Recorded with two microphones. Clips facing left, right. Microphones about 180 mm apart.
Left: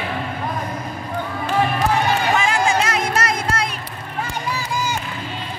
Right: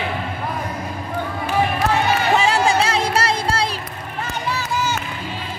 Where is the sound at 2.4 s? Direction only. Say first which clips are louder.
Right 2 dB; 35° right (ahead or behind).